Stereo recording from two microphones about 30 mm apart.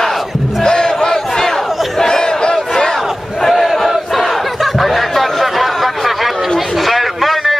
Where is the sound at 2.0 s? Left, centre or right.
Left.